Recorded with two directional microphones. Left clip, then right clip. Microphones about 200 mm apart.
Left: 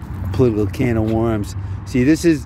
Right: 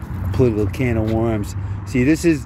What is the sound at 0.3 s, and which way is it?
Speech, 25° left (ahead or behind).